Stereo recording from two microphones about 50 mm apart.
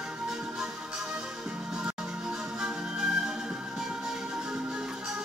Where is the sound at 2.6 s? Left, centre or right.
Centre.